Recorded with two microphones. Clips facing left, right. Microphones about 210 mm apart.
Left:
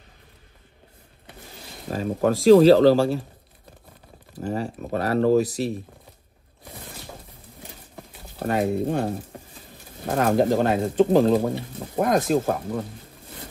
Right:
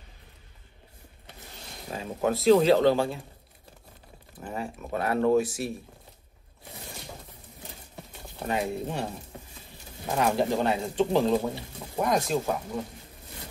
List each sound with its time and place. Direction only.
1.9 s speech: 50° left (ahead or behind)
2.6 s speech: 35° left (ahead or behind)
4.4 s speech: 40° left (ahead or behind)
8.4 s speech: 50° left (ahead or behind)